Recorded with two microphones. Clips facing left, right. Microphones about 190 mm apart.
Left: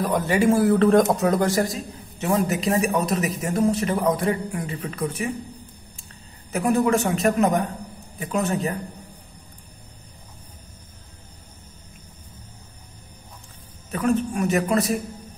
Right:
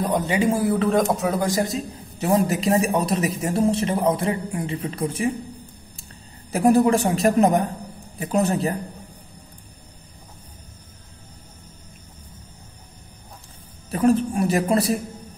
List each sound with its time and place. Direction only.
0.0 s a man's voice: 20° right (ahead or behind)
0.8 s speech: centre (ahead or behind)
1.4 s a man's voice: 15° right (ahead or behind)
2.1 s speech: 35° right (ahead or behind)
6.5 s a man's voice: 35° right (ahead or behind)
13.8 s a man's voice: 35° right (ahead or behind)